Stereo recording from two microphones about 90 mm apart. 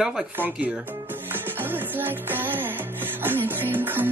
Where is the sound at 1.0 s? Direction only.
25° right (ahead or behind).